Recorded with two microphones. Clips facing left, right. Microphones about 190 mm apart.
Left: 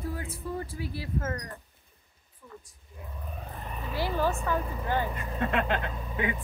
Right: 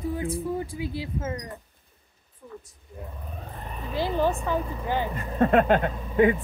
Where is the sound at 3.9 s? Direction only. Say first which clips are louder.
Right 4 dB; 20° right (ahead or behind).